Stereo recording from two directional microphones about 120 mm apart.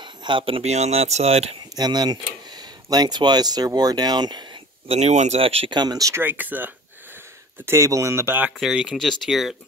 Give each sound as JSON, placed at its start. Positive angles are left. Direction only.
{"t": 0.0, "sound": "speech", "side_deg": -40}
{"t": 1.8, "sound": "speech", "side_deg": -35}
{"t": 4.8, "sound": "speech", "side_deg": -70}
{"t": 5.4, "sound": "speech", "side_deg": -55}
{"t": 5.8, "sound": "speech", "side_deg": -30}
{"t": 6.2, "sound": "speech", "side_deg": -15}
{"t": 8.5, "sound": "speech", "side_deg": -5}